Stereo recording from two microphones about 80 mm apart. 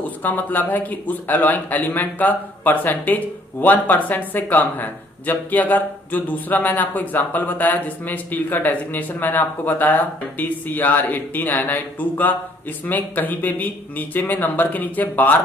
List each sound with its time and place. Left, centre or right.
0.0 s speech: left